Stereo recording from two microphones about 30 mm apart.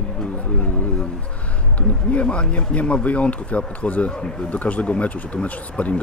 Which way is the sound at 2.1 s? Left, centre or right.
Left.